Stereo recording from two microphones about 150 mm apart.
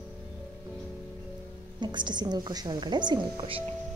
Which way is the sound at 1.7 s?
30° right (ahead or behind).